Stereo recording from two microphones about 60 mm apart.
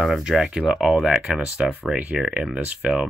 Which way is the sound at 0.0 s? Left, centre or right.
Centre.